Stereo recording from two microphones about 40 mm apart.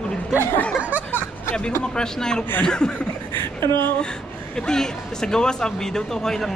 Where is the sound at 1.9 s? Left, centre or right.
Centre.